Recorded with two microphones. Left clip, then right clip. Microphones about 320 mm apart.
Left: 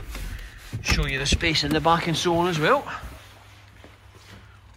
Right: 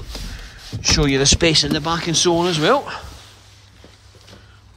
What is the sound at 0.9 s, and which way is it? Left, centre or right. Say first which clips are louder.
Speech: right 9 dB; centre.